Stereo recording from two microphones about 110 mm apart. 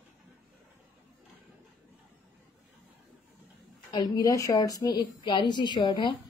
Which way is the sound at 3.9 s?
40° left (ahead or behind).